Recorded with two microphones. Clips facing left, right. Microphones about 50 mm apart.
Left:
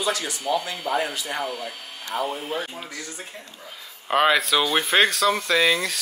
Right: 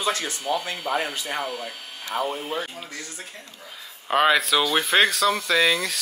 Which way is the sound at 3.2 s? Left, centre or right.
Left.